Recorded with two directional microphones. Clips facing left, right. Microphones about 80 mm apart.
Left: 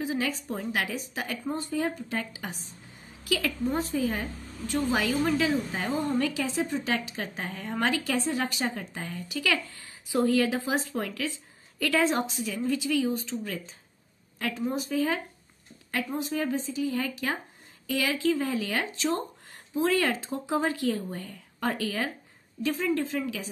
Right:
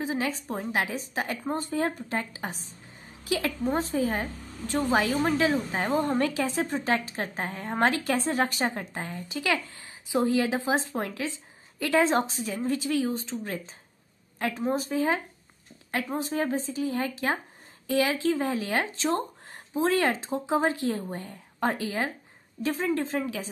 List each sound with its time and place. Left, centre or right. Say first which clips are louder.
0.0 s a woman's voice: right 1 dB; right